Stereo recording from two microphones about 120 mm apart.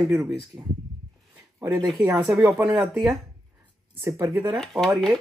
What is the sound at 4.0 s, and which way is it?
Speech, 20° right (ahead or behind).